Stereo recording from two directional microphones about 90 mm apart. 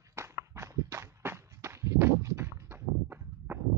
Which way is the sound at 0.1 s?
30° right (ahead or behind).